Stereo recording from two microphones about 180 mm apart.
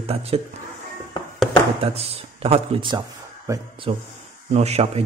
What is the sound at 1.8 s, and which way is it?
Speech, 35° right (ahead or behind).